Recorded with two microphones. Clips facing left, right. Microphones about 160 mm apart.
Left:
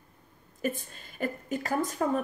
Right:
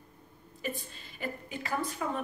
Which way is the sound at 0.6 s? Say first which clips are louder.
Left 5 dB; 50° left (ahead or behind).